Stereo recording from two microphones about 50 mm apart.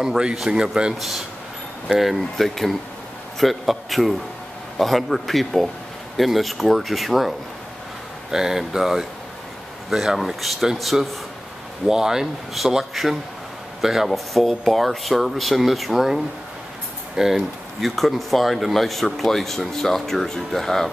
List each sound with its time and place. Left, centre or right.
0.0 s speech: centre
0.9 s speech: centre